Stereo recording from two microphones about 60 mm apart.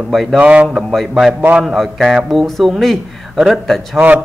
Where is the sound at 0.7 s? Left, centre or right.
Centre.